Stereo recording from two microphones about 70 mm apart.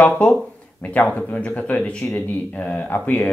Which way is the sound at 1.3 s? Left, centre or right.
Left.